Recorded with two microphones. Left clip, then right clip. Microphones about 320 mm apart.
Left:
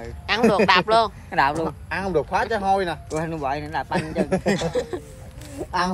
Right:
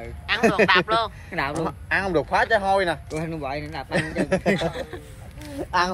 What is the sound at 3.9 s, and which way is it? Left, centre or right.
Speech, right.